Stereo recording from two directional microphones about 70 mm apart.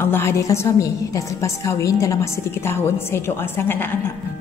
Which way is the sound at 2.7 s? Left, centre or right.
Left.